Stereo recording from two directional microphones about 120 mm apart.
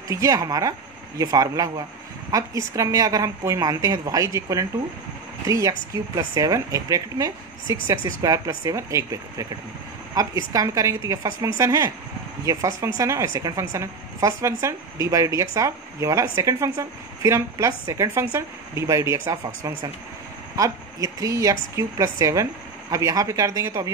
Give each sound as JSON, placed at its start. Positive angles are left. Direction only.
{"t": 0.1, "sound": "a woman's voice", "side_deg": -25}